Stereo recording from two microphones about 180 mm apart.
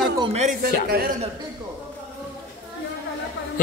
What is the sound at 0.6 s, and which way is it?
Speech, 60° right (ahead or behind).